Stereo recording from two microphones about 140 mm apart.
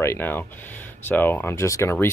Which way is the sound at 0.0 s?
15° left (ahead or behind).